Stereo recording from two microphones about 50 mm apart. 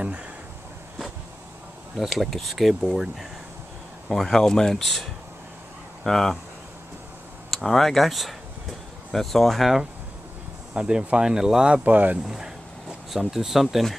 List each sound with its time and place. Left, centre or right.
2.0 s speech: centre
4.1 s speech: centre
6.0 s speech: centre
7.5 s speech: centre
10.7 s speech: centre
11.7 s speech: right
12.3 s speech: centre